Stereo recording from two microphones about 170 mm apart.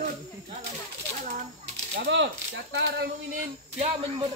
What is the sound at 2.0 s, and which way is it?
Speech, 90° right.